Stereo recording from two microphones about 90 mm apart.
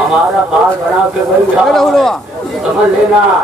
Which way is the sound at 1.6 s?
5° left (ahead or behind).